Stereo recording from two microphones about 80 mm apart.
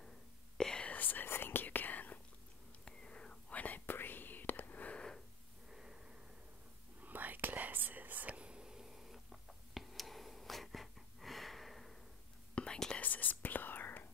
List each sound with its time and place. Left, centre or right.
0.6 s whispering: centre
0.9 s whispering: left
5.7 s a sound: centre
7.0 s whispering: right; by 13.0 s centre
13.0 s whispering: left